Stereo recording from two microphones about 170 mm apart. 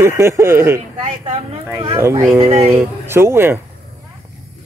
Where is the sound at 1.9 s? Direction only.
15° right (ahead or behind).